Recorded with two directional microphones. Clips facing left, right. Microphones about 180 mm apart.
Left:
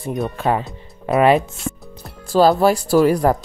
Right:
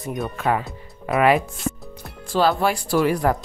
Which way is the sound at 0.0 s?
30° left (ahead or behind).